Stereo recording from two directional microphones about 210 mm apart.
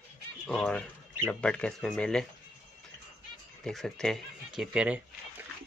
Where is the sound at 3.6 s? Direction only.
5° left (ahead or behind).